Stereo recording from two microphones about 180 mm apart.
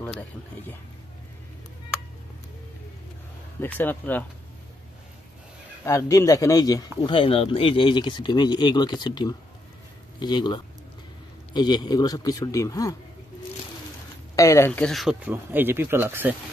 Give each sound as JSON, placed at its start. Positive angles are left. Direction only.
{"t": 3.6, "sound": "speech", "side_deg": 10}
{"t": 5.9, "sound": "speech", "side_deg": 15}
{"t": 14.3, "sound": "speech", "side_deg": 15}
{"t": 14.9, "sound": "speech", "side_deg": 0}